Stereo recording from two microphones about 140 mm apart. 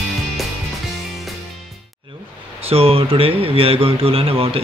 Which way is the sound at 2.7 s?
45° right (ahead or behind).